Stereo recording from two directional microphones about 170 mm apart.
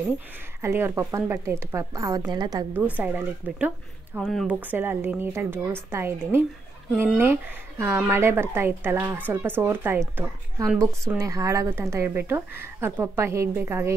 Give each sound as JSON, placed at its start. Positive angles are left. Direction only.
{"t": 0.6, "sound": "speech", "side_deg": -15}
{"t": 3.0, "sound": "speech", "side_deg": -10}
{"t": 4.6, "sound": "speech", "side_deg": -10}
{"t": 7.8, "sound": "speech", "side_deg": -15}